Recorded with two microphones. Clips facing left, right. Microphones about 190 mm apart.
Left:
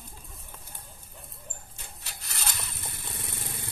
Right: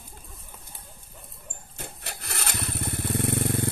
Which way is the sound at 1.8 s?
60° right (ahead or behind).